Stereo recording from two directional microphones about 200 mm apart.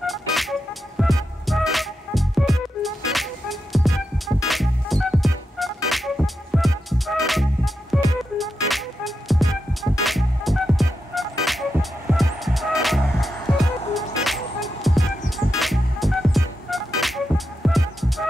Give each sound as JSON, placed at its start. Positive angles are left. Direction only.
{"t": 0.0, "sound": "music", "side_deg": 0}